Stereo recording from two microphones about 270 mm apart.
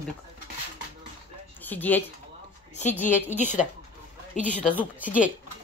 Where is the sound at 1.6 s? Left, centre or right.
Centre.